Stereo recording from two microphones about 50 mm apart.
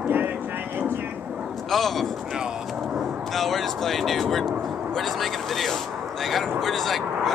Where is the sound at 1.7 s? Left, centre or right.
Centre.